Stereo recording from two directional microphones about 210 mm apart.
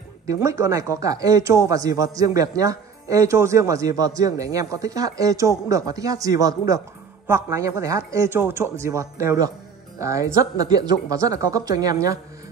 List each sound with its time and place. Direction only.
0.3 s a man's voice: 15° right (ahead or behind)